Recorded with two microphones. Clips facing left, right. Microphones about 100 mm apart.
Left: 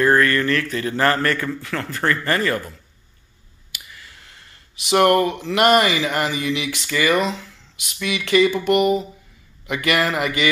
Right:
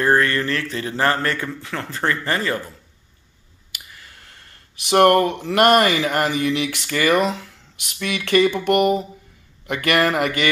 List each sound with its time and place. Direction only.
0.0 s speech: 25° right (ahead or behind)
3.7 s a sound: 40° right (ahead or behind)
5.4 s speech: 50° right (ahead or behind)